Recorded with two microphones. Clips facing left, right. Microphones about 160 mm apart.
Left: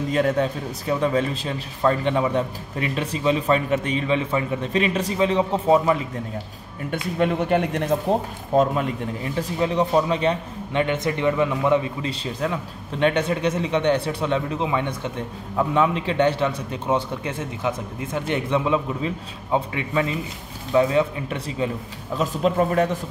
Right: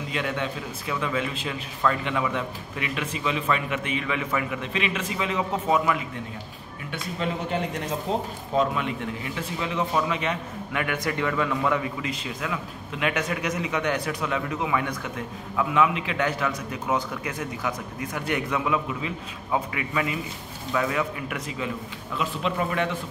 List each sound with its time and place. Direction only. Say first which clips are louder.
0.1 s a man's voice: left 8 dB; 40° left (ahead or behind)
6.9 s speech: left 7 dB; 60° left (ahead or behind)
8.5 s a man's voice: left 5 dB; 40° left (ahead or behind)